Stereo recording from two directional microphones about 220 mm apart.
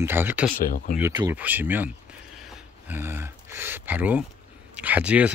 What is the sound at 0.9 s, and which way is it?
Speech, 15° right (ahead or behind).